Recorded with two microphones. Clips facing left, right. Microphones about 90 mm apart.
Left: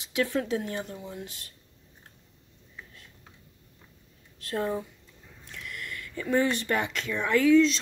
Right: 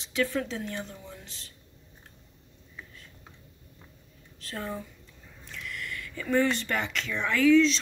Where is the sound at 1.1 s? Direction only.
55° left (ahead or behind).